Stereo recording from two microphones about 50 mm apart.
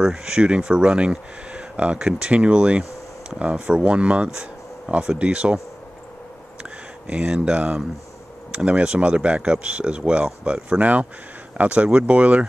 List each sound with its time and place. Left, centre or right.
0.0 s speech: centre
6.6 s speech: right